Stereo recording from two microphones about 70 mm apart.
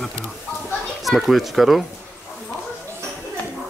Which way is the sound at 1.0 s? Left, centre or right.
Centre.